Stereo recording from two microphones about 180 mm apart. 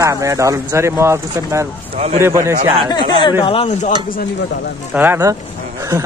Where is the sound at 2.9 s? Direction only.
25° left (ahead or behind).